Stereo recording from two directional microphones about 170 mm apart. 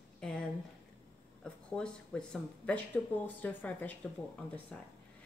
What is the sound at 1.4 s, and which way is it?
Speech, 5° left (ahead or behind).